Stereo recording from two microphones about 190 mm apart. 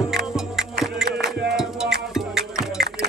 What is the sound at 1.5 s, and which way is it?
Music, centre (ahead or behind).